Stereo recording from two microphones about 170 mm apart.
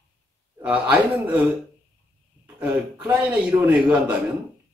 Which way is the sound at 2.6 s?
5° right (ahead or behind).